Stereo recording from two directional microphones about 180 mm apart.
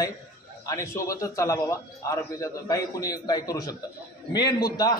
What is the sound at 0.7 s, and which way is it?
A man's voice, 15° left (ahead or behind).